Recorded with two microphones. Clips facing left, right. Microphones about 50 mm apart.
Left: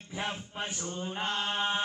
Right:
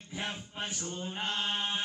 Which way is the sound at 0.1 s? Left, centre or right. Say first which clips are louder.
Left 3 dB; left.